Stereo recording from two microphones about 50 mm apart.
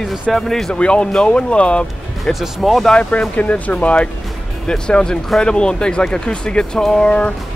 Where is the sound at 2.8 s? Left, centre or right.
Centre.